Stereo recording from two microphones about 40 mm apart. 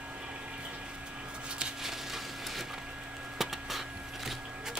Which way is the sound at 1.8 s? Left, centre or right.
Centre.